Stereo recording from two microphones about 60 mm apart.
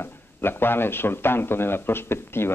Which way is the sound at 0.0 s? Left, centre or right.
Left.